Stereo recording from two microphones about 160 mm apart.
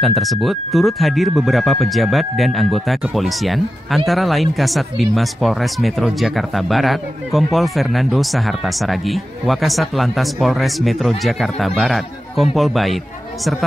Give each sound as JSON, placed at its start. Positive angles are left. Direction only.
{"t": 0.0, "sound": "speech", "side_deg": 0}